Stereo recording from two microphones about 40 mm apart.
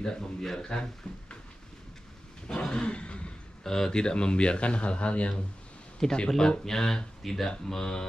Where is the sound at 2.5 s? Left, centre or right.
Centre.